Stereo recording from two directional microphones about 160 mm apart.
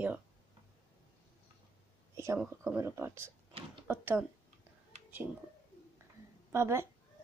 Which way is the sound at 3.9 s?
15° right (ahead or behind).